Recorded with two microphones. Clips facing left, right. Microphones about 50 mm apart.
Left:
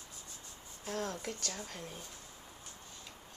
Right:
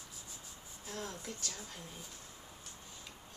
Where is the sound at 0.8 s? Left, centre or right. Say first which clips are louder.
Left 5 dB; left.